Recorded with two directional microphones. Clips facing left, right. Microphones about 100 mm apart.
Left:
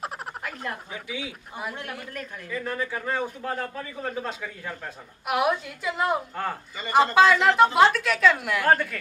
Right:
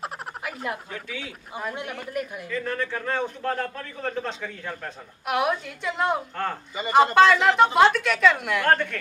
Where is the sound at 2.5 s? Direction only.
10° left (ahead or behind).